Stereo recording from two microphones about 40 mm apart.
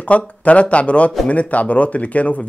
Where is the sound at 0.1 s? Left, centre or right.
Left.